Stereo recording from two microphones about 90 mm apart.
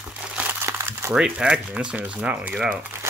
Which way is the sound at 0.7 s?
30° right (ahead or behind).